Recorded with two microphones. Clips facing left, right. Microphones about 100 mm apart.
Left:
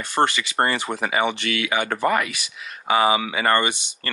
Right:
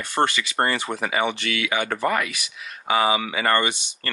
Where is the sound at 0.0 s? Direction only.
20° left (ahead or behind).